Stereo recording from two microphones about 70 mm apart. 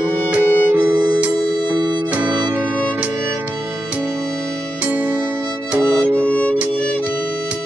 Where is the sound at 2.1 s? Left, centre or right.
Right.